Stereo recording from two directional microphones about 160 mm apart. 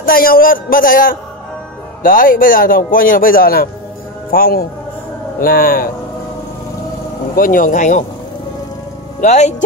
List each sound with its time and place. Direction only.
0.0 s a man's voice: 65° left (ahead or behind)
7.3 s a man's voice: 60° left (ahead or behind)
9.2 s speech: 45° left (ahead or behind)